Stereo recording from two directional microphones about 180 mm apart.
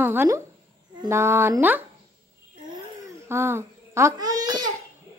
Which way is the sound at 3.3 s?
15° right (ahead or behind).